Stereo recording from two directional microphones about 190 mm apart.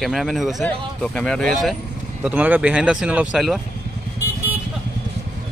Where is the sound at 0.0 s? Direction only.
Centre (ahead or behind).